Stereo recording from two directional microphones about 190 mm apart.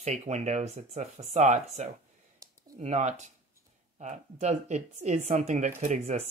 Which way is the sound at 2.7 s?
40° right (ahead or behind).